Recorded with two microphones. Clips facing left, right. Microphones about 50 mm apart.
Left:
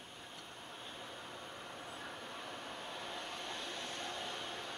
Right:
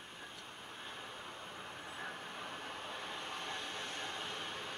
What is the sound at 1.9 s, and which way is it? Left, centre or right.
Vehicle, right.